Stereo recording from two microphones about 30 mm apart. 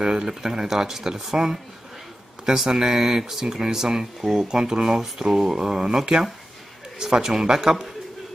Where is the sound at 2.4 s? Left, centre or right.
Centre.